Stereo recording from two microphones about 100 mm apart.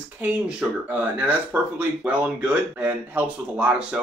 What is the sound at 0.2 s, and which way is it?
Speech, 10° right (ahead or behind).